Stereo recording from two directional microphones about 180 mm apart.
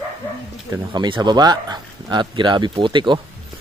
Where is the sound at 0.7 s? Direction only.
25° right (ahead or behind).